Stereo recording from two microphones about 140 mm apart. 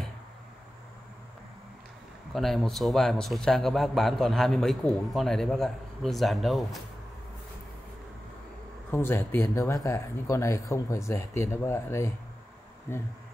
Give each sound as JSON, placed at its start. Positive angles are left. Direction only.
{"t": 2.3, "sound": "speech", "side_deg": 0}
{"t": 8.9, "sound": "speech", "side_deg": 15}